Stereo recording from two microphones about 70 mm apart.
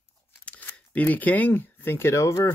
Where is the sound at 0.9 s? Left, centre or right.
Left.